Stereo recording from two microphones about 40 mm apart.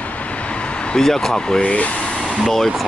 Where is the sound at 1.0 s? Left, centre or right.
Centre.